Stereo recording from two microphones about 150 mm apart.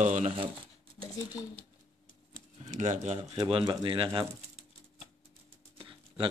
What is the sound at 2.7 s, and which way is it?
Speech, 55° right (ahead or behind).